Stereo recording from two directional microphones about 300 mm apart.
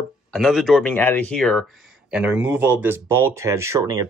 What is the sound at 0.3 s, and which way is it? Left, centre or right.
Speech, centre.